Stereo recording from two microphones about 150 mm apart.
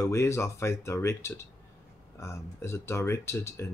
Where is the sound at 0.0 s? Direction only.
20° left (ahead or behind).